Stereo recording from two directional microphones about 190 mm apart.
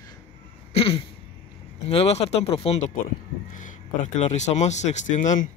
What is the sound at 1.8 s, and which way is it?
Speech, 35° left (ahead or behind).